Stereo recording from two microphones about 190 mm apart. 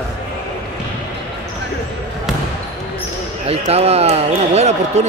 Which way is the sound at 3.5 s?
35° right (ahead or behind).